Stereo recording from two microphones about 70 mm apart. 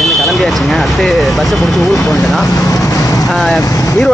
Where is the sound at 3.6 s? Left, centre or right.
Left.